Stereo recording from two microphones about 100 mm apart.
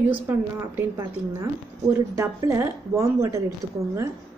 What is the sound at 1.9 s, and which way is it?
A woman's voice, 30° right (ahead or behind).